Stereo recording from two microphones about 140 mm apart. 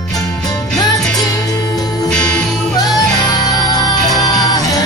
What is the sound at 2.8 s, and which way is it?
Music, 25° left (ahead or behind).